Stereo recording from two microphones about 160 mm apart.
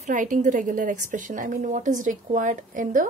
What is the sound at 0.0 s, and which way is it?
A woman's voice, 55° right (ahead or behind).